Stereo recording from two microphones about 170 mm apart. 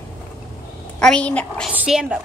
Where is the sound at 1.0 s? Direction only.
5° left (ahead or behind).